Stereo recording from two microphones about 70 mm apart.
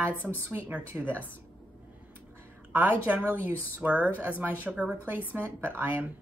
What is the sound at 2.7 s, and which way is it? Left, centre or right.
Speech, right.